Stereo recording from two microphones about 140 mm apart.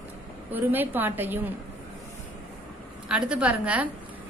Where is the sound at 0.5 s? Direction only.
15° right (ahead or behind).